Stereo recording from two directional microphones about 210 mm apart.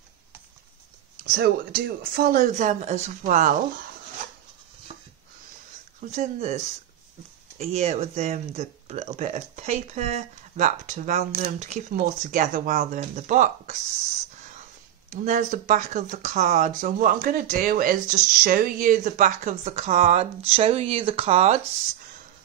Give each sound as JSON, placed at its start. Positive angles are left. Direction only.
{"t": 1.2, "sound": "speech", "side_deg": -45}
{"t": 5.9, "sound": "speech", "side_deg": -35}
{"t": 15.0, "sound": "speech", "side_deg": -35}